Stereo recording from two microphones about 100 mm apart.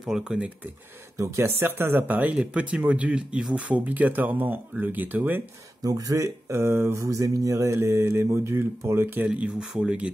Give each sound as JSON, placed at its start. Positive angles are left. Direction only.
{"t": 0.0, "sound": "speech", "side_deg": -5}
{"t": 1.1, "sound": "speech", "side_deg": -30}
{"t": 5.8, "sound": "speech", "side_deg": -35}
{"t": 9.3, "sound": "speech", "side_deg": -10}